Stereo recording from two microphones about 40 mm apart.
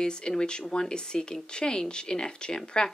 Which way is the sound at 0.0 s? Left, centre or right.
Left.